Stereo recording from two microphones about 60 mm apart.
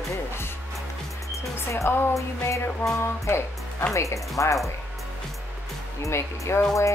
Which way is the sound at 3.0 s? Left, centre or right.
Left.